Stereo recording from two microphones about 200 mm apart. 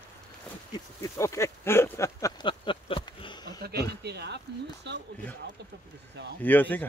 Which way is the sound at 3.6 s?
55° right (ahead or behind).